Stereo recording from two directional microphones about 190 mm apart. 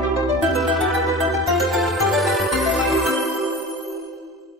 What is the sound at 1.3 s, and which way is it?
Music, centre (ahead or behind).